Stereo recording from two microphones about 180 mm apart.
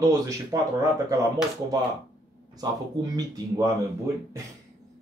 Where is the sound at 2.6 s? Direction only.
20° right (ahead or behind).